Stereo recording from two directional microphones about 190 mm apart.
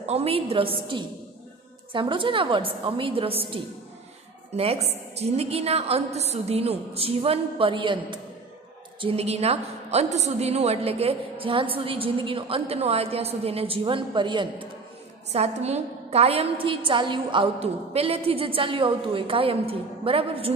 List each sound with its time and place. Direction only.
0.0 s a woman's voice: 35° right (ahead or behind)